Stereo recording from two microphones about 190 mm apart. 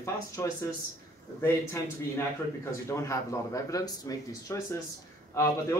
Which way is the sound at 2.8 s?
15° left (ahead or behind).